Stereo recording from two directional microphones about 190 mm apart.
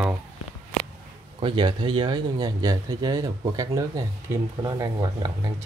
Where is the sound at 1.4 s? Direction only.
25° right (ahead or behind).